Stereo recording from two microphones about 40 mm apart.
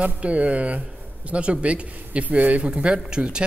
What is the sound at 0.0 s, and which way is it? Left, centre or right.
A man's voice, right.